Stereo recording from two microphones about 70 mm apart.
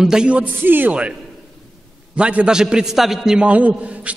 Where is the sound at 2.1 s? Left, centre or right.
Centre.